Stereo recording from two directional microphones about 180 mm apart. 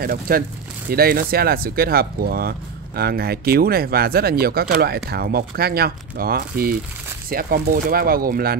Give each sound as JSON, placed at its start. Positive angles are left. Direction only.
{"t": 0.0, "sound": "speech", "side_deg": -55}